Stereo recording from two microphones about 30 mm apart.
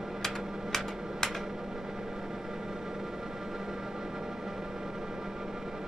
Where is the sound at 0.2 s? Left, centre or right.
Centre.